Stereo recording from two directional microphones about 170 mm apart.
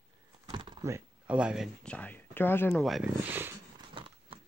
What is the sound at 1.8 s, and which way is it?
Speech, 10° left (ahead or behind).